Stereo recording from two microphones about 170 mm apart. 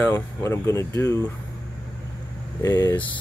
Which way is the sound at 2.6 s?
20° left (ahead or behind).